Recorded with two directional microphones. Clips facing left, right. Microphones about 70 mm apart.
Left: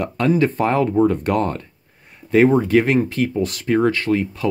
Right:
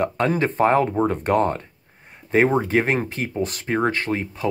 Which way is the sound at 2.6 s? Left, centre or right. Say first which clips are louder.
Left 4 dB; right.